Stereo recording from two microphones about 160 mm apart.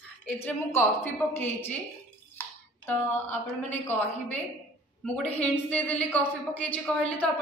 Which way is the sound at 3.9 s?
10° left (ahead or behind).